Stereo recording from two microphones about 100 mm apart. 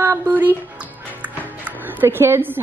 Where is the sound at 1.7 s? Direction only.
20° right (ahead or behind).